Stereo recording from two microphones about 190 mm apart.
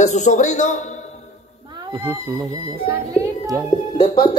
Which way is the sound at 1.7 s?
25° right (ahead or behind).